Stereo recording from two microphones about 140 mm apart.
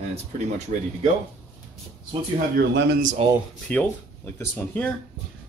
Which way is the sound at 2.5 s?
65° right (ahead or behind).